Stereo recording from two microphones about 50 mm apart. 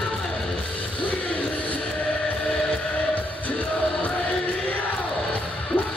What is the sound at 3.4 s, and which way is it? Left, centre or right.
Music, left.